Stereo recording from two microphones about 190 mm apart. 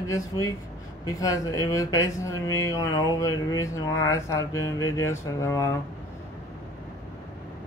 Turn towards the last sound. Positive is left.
turn(degrees=15)  # may be behind; listen again after turning